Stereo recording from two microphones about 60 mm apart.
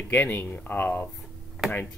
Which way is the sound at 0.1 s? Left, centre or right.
Left.